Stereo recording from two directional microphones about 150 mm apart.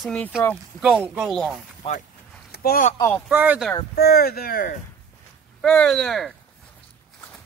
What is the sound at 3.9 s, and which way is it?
Speech, 90° left.